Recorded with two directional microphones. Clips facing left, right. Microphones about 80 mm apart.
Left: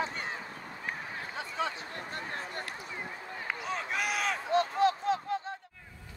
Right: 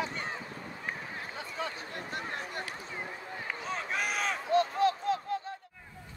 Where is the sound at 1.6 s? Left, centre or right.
Left.